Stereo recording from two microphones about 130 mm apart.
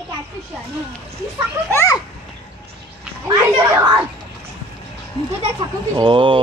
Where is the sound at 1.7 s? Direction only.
20° left (ahead or behind).